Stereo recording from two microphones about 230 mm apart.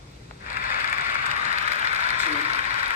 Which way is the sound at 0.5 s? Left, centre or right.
Left.